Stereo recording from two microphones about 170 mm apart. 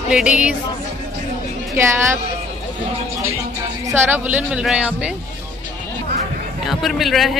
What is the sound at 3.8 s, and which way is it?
Speech, 15° right (ahead or behind).